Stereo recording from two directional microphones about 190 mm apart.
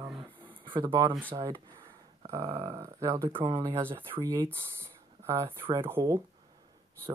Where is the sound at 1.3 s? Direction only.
20° right (ahead or behind).